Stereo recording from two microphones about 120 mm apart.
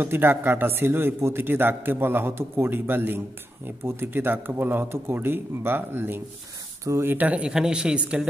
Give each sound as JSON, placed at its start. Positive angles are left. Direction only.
{"t": 0.0, "sound": "a man's voice", "side_deg": -15}